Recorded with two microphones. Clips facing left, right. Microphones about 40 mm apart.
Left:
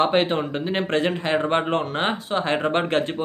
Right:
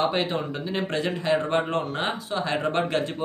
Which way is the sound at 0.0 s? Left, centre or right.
Left.